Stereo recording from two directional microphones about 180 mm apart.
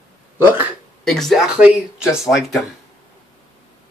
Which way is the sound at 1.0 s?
Centre (ahead or behind).